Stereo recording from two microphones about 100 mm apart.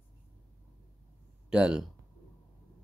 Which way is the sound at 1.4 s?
10° right (ahead or behind).